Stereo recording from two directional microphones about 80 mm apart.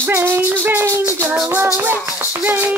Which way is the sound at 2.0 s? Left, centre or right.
Right.